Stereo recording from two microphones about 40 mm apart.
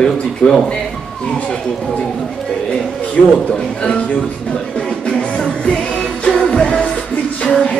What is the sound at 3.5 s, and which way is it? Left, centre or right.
Music, left.